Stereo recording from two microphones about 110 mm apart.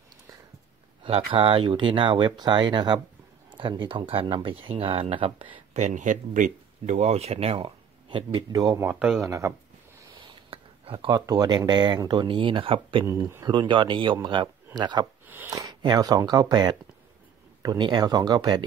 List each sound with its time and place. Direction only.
1.0 s speech: 55° right (ahead or behind)
5.7 s speech: 90° right
6.9 s speech: 80° right; by 8.5 s 50° right (ahead or behind)
8.5 s speech: 35° right (ahead or behind)
8.8 s a man's voice: 10° right (ahead or behind)
9.2 s speech: 30° right (ahead or behind)
10.1 s a sound: 55° right (ahead or behind)
11.1 s speech: 35° right (ahead or behind)
13.0 s speech: 25° right (ahead or behind)
13.5 s speech: 45° right (ahead or behind)
15.2 s speech: 15° right (ahead or behind)
15.5 s speech: 40° right (ahead or behind)